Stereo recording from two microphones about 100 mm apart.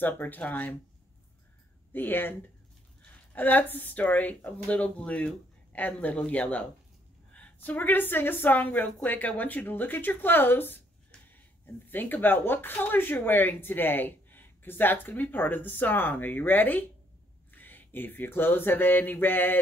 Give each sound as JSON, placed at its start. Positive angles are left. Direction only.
{"t": 0.0, "sound": "speech", "side_deg": 15}
{"t": 1.9, "sound": "speech", "side_deg": 20}